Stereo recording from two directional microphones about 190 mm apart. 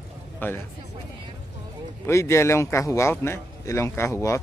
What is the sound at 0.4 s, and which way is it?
Speech, 10° left (ahead or behind).